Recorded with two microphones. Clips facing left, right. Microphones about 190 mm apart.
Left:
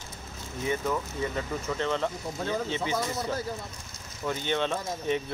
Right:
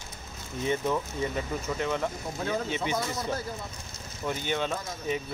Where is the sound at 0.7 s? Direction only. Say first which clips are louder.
Right 1 dB; 20° right (ahead or behind).